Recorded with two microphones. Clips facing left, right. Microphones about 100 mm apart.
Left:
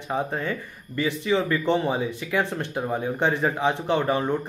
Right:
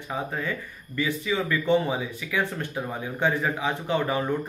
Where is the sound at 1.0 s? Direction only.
25° left (ahead or behind).